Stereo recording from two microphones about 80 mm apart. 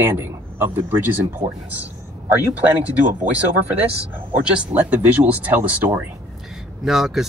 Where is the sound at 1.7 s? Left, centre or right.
Right.